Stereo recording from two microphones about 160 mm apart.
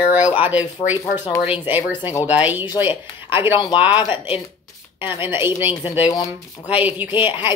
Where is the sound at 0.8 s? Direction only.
25° left (ahead or behind).